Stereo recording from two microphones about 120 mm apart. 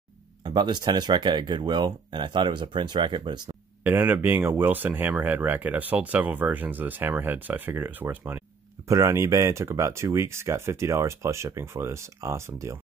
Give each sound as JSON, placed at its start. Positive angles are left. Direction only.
{"t": 0.4, "sound": "speech", "side_deg": -40}
{"t": 3.8, "sound": "speech", "side_deg": -15}